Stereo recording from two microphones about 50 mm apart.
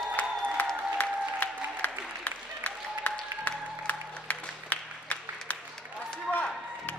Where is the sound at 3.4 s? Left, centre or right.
Left.